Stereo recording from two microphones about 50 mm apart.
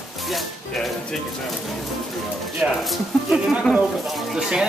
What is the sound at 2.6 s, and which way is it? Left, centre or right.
Speech, right.